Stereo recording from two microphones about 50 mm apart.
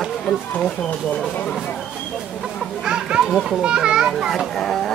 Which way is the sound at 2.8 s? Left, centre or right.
Centre.